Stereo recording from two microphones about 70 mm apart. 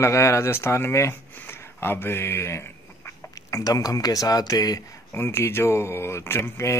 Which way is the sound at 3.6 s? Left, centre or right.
Left.